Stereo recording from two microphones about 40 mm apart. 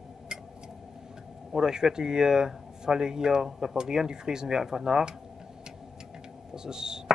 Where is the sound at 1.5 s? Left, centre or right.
Centre.